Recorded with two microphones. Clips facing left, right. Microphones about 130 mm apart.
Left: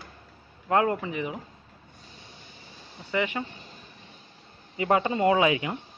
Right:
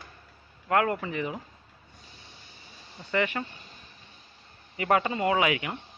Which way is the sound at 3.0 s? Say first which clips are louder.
Even; 15° left (ahead or behind).